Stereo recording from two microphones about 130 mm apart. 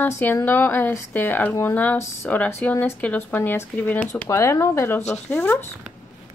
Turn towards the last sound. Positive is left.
turn(degrees=15)  # may be behind; listen again after turning